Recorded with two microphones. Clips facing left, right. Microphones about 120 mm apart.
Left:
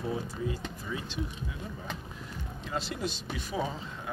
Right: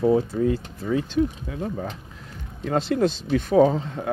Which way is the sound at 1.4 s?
75° right (ahead or behind).